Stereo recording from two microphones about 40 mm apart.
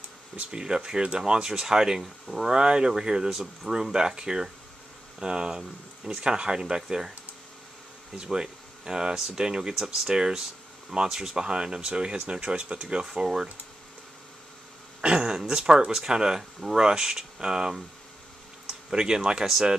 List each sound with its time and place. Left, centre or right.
0.5 s speech: centre
2.5 s speech: right
8.2 s speech: centre
15.0 s speech: centre